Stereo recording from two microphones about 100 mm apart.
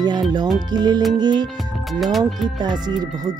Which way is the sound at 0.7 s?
45° right (ahead or behind).